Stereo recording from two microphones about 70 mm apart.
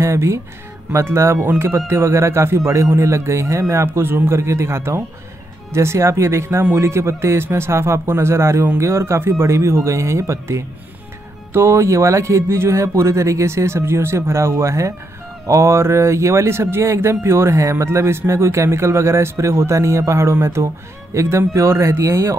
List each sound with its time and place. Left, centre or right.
0.0 s a man's voice: right